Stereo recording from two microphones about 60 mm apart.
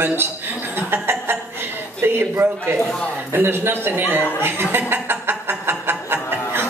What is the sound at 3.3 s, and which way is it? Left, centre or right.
Speech, right.